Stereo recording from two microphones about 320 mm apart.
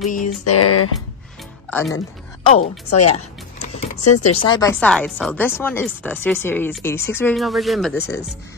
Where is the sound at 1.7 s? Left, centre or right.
Centre.